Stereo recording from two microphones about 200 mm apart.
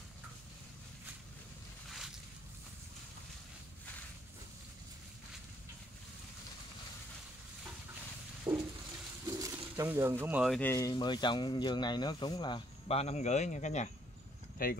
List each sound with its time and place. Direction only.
1.9 s boat: centre (ahead or behind)
8.5 s a sound: 20° right (ahead or behind)
9.2 s bird: 15° right (ahead or behind)
10.6 s speech: 15° left (ahead or behind); by 14.7 s 45° left (ahead or behind)